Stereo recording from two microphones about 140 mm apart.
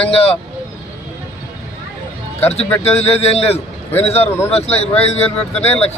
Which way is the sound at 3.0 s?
45° left (ahead or behind).